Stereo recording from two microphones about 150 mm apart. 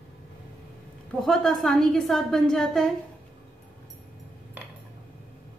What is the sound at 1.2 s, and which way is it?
A woman's voice, centre (ahead or behind).